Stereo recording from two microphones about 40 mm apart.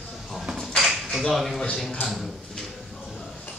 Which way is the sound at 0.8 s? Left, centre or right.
Centre.